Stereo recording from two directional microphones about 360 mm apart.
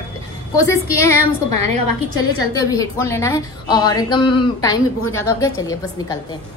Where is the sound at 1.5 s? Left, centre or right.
Left.